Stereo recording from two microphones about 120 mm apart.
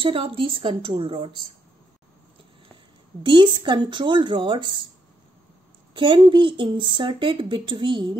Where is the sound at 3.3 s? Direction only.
40° right (ahead or behind).